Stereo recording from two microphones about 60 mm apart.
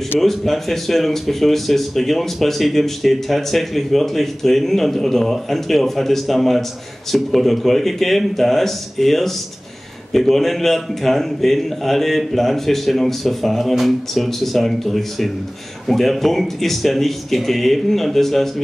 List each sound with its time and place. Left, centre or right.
0.2 s speech: centre